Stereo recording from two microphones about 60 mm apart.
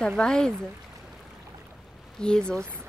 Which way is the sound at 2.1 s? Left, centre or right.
Centre.